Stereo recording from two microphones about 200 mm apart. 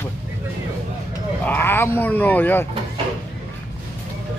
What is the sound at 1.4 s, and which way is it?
Speech, 10° left (ahead or behind).